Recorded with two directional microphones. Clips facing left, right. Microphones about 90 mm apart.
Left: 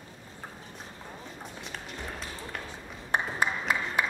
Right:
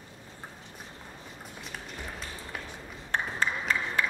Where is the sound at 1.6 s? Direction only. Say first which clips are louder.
Even; centre (ahead or behind).